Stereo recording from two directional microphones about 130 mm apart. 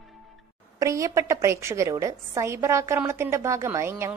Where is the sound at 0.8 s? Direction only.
25° right (ahead or behind).